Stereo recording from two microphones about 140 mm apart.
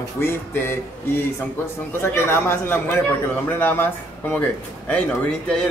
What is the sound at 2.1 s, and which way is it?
Speech, 15° left (ahead or behind).